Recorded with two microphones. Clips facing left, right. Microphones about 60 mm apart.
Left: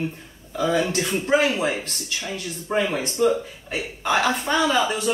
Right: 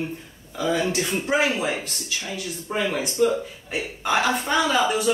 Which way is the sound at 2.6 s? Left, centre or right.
Centre.